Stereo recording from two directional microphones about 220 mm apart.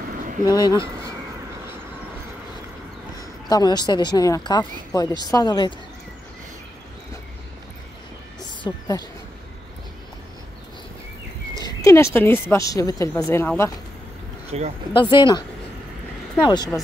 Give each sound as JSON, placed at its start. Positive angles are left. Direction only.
{"t": 0.6, "sound": "speech", "side_deg": 20}
{"t": 3.2, "sound": "a woman's voice", "side_deg": 15}
{"t": 8.4, "sound": "a sound", "side_deg": 15}
{"t": 11.6, "sound": "a woman's voice", "side_deg": 15}
{"t": 14.5, "sound": "speech", "side_deg": -30}
{"t": 15.0, "sound": "speech", "side_deg": 20}
{"t": 16.4, "sound": "speech", "side_deg": 20}